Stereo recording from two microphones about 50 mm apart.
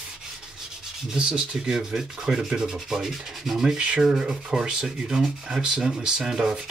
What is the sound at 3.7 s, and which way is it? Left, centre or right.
Rub, centre.